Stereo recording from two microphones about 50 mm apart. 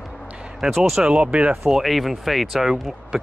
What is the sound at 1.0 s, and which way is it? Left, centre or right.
Speech, right.